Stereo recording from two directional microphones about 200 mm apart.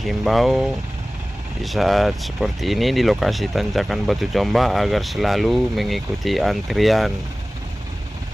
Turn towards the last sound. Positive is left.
turn(degrees=0)  # may be behind; listen again after turning